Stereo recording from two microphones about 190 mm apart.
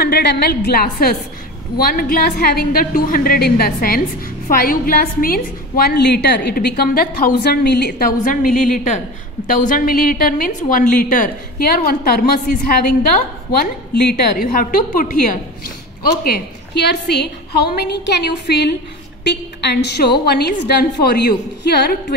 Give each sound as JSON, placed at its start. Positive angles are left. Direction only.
{"t": 0.0, "sound": "a woman's voice", "side_deg": 60}
{"t": 16.3, "sound": "a woman's voice", "side_deg": 60}